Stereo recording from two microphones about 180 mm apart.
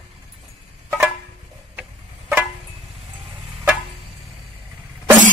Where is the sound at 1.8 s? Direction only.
10° right (ahead or behind).